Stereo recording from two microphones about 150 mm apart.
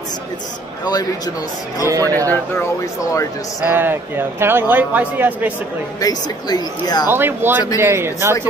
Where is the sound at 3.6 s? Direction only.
15° right (ahead or behind).